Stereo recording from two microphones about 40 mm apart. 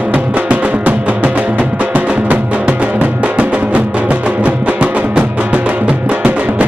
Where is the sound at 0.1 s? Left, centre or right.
Right.